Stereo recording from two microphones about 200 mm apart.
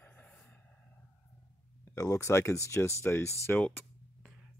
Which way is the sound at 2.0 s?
15° left (ahead or behind).